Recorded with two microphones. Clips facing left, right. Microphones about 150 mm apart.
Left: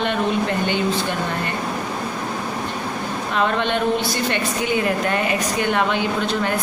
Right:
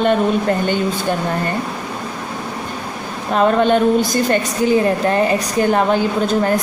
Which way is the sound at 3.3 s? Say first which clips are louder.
Right 8 dB; 40° right (ahead or behind).